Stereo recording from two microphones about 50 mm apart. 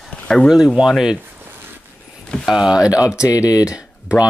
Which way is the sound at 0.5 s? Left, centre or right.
Centre.